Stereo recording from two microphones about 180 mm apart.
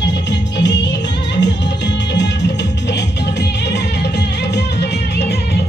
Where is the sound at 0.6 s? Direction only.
75° left (ahead or behind).